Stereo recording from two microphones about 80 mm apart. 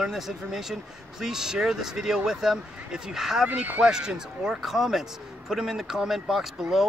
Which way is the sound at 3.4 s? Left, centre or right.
Centre.